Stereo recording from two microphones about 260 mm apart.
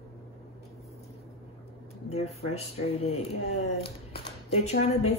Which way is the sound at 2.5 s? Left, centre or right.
Left.